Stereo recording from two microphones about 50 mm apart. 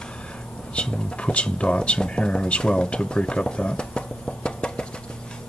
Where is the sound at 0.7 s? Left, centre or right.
Left.